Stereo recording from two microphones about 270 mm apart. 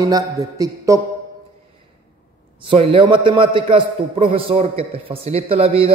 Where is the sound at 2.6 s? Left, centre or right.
Centre.